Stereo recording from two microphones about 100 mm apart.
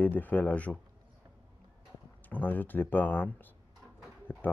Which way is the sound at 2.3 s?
20° left (ahead or behind).